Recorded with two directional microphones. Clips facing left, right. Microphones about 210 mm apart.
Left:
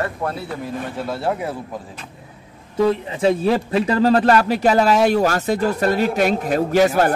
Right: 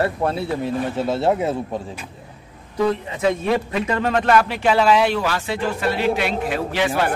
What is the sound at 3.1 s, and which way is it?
A man's voice, 30° left (ahead or behind).